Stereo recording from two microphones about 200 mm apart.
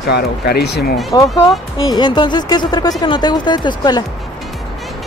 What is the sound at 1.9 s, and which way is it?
Speech, 20° left (ahead or behind).